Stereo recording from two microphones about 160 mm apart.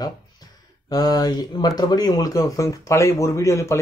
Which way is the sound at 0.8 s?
25° left (ahead or behind).